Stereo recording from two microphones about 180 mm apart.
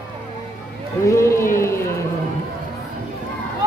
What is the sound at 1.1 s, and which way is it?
Run, 15° left (ahead or behind).